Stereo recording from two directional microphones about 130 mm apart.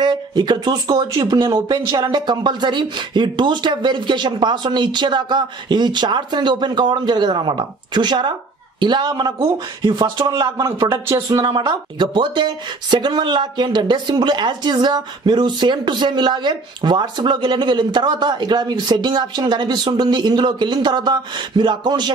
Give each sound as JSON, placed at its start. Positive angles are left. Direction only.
{"t": 0.0, "sound": "speech", "side_deg": -35}